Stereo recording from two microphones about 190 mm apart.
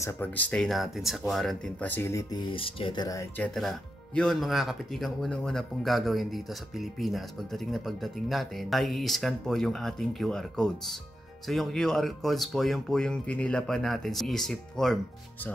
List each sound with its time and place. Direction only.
0.0 s speech: 10° left (ahead or behind)
2.5 s speech: 25° left (ahead or behind)
3.5 s speech: centre (ahead or behind)